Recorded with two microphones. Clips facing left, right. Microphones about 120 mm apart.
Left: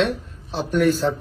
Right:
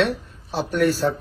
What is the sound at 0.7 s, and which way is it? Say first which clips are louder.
Speech: left 2 dB; centre (ahead or behind).